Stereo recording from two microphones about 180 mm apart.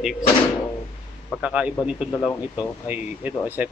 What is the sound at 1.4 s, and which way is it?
A man's voice, 5° right (ahead or behind).